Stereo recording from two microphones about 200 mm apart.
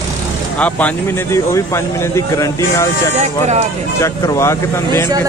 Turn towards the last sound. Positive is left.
turn(degrees=15)  # may be behind; listen again after turning